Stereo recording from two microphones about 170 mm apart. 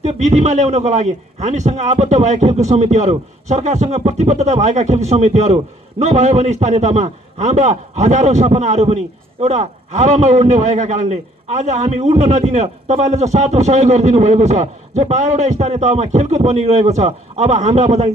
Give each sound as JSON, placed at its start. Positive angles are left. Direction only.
{"t": 0.0, "sound": "a man's voice", "side_deg": -45}